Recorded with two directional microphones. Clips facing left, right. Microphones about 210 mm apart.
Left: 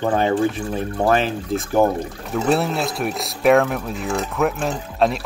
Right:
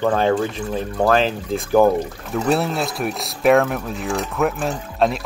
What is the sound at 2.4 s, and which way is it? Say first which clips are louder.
Speech: even; centre (ahead or behind).